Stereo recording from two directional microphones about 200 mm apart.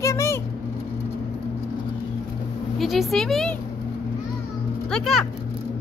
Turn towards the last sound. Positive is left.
turn(degrees=0)  # may be behind; listen again after turning